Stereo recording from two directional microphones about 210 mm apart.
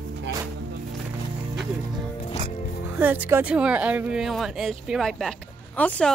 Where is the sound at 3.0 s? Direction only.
10° right (ahead or behind).